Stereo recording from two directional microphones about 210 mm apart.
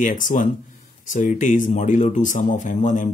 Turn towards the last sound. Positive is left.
turn(degrees=35)  # may be behind; listen again after turning